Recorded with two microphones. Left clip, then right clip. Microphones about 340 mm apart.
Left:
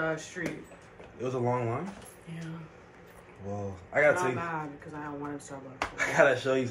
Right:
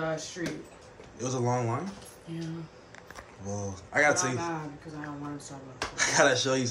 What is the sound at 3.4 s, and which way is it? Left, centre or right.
A man's voice, centre.